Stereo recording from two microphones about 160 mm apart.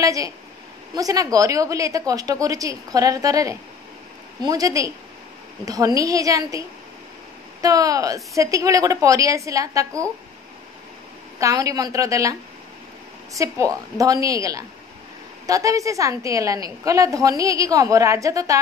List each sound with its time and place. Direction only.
0.0 s a woman's voice: 20° right (ahead or behind)
7.6 s a woman's voice: 20° right (ahead or behind)
11.3 s a woman's voice: 20° right (ahead or behind)
13.4 s a woman's voice: 20° right (ahead or behind)